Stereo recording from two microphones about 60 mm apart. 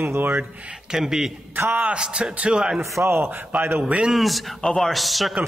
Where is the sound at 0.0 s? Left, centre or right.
Right.